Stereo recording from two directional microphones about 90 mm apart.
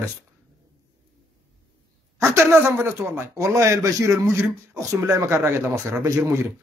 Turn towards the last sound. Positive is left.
turn(degrees=-35)  # may be behind; listen again after turning